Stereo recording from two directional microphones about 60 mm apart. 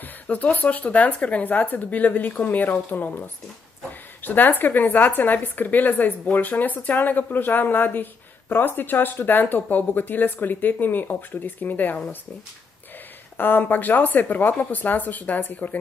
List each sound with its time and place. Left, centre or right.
0.0 s a woman's voice: left
13.4 s a woman's voice: left